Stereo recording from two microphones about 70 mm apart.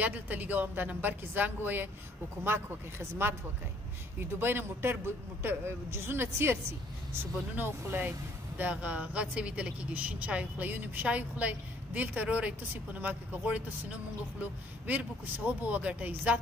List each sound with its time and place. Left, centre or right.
0.0 s speech: right
4.4 s speech: right